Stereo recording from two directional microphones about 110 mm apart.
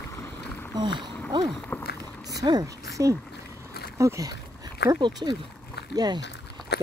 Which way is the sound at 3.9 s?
25° right (ahead or behind).